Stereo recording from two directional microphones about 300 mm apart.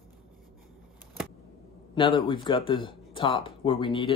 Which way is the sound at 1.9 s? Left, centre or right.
Centre.